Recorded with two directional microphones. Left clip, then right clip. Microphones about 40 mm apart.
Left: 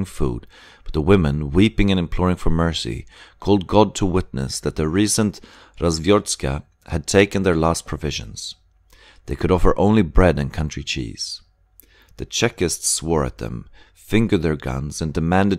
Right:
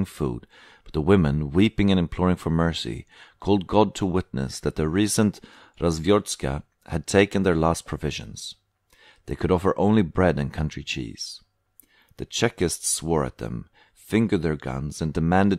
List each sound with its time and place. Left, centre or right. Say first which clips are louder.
0.0 s speech: left 3 dB; centre
9.0 s a sound: left 3 dB; centre
9.4 s speech: left 4 dB; centre
14.7 s speech: left 3 dB; centre